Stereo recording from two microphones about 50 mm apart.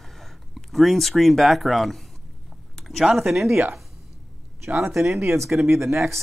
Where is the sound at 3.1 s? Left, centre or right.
Centre.